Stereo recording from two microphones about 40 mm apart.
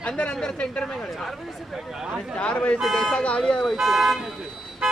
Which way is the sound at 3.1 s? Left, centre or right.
Left.